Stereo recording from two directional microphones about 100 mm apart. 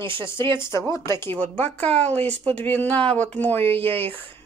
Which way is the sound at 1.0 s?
25° left (ahead or behind).